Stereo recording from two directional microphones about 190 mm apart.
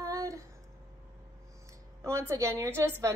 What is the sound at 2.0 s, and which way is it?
A woman's voice, 15° right (ahead or behind).